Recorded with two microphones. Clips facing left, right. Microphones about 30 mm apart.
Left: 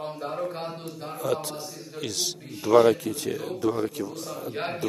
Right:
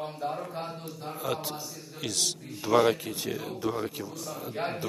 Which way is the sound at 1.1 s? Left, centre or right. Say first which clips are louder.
Left 5 dB; centre.